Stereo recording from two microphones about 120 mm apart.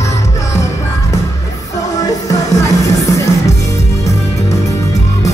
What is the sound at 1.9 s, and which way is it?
Music, 30° left (ahead or behind).